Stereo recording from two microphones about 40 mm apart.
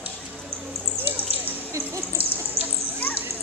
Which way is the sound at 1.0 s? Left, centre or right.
Right.